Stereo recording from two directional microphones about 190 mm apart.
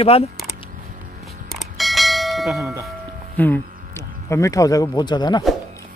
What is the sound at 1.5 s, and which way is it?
Bell, centre (ahead or behind).